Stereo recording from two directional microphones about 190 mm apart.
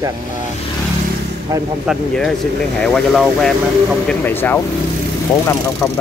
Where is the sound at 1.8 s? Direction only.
Centre (ahead or behind).